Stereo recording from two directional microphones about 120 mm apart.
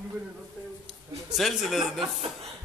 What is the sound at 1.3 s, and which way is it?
Speech, centre (ahead or behind).